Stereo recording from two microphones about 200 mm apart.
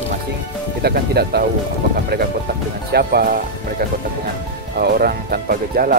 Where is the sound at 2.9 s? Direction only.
50° right (ahead or behind).